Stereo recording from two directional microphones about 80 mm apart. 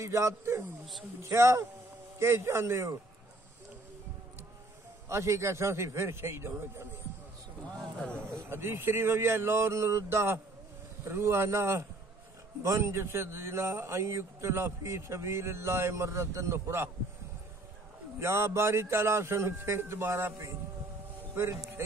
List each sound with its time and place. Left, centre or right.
0.0 s a man's voice: right
5.0 s a man's voice: right
7.7 s speech: centre
8.3 s a man's voice: right
18.2 s a man's voice: right
21.4 s a man's voice: right